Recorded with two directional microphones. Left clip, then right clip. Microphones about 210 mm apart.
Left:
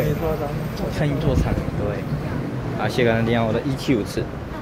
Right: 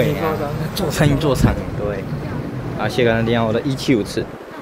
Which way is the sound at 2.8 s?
10° right (ahead or behind).